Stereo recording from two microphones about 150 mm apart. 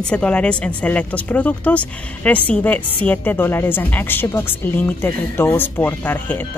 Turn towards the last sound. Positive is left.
turn(degrees=10)  # may be behind; listen again after turning